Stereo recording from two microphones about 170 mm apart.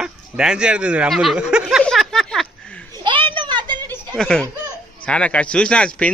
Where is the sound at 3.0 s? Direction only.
30° right (ahead or behind).